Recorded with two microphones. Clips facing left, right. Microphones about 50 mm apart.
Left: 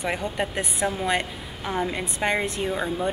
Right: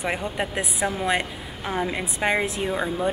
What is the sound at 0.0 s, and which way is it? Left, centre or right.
A woman's voice, centre.